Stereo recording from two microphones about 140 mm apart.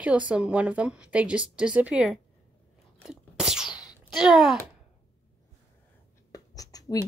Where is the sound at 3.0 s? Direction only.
5° right (ahead or behind).